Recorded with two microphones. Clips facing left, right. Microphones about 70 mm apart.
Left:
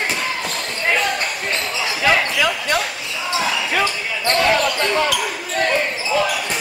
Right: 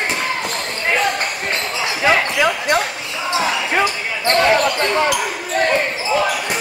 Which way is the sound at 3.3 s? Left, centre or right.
Right.